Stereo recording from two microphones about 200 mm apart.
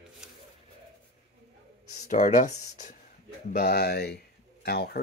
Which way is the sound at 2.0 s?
40° left (ahead or behind).